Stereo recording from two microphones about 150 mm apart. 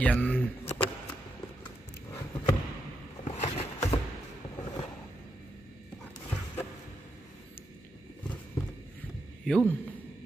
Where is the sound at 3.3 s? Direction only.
45° left (ahead or behind).